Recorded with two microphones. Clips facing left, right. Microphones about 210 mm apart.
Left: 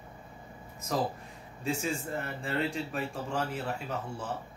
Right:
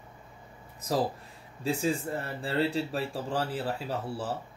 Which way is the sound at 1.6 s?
35° right (ahead or behind).